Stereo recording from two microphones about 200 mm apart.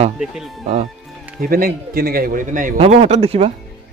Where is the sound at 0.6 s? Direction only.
35° right (ahead or behind).